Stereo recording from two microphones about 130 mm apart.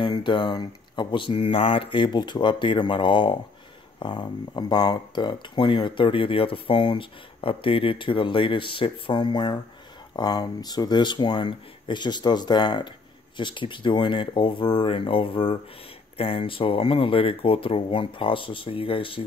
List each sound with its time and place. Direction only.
0.0 s speech: 40° left (ahead or behind)